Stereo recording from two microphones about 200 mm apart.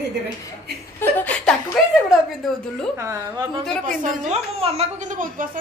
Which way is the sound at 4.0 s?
40° right (ahead or behind).